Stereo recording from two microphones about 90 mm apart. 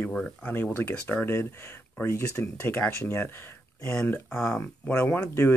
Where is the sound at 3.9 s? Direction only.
15° left (ahead or behind).